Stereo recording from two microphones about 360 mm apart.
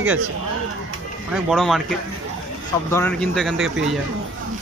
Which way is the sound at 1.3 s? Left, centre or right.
Centre.